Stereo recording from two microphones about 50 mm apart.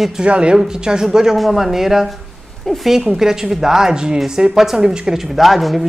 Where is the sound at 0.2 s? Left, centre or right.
Right.